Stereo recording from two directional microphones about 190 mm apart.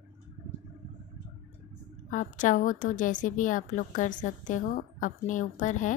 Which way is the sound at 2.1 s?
40° left (ahead or behind).